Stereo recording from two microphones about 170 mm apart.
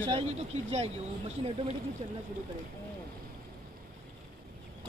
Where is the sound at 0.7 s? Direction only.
40° right (ahead or behind).